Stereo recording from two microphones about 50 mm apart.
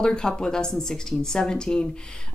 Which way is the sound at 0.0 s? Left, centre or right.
Centre.